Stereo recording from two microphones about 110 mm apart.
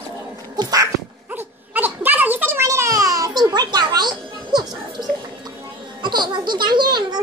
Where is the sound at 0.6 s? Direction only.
35° right (ahead or behind).